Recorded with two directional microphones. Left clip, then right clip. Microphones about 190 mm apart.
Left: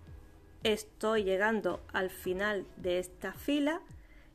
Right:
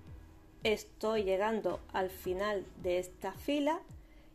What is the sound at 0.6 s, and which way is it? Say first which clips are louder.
A woman's voice: left 2 dB; 20° left (ahead or behind).